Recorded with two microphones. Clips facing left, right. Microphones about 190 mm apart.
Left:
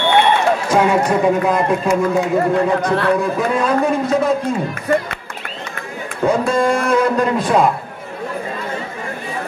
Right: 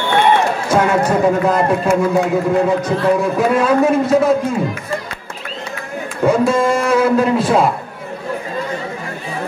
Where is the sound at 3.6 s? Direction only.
5° right (ahead or behind).